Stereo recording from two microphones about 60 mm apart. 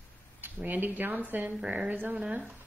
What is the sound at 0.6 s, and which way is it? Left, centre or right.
Speech, right.